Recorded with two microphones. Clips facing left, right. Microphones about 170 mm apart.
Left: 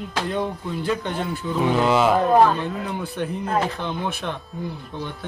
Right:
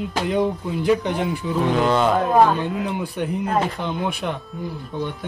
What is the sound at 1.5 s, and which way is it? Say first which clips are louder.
Speech: even; centre (ahead or behind).